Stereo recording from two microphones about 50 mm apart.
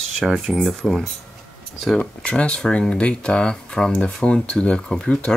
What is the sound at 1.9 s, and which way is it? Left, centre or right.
Speech, centre.